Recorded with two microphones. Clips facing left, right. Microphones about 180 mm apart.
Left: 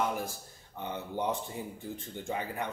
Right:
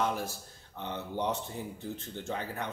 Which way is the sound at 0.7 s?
10° left (ahead or behind).